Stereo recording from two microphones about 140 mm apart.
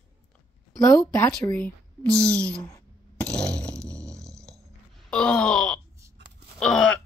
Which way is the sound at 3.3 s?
5° left (ahead or behind).